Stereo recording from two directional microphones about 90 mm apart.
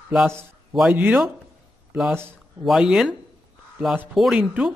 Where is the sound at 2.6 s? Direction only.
5° right (ahead or behind).